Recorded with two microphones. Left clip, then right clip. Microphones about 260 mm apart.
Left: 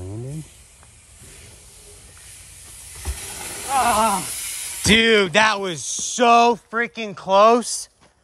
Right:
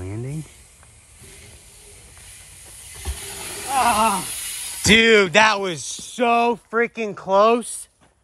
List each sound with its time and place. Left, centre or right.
0.0 s snake: centre
3.0 s speech: centre
7.6 s speech: left